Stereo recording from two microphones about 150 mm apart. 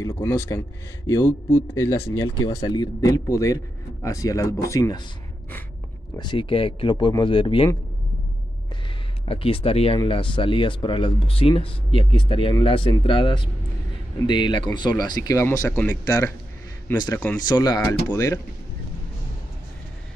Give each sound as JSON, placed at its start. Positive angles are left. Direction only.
{"t": 0.0, "sound": "a man's voice", "side_deg": 15}
{"t": 6.1, "sound": "speech", "side_deg": 30}
{"t": 9.3, "sound": "a man's voice", "side_deg": 35}
{"t": 17.8, "sound": "a man's voice", "side_deg": 15}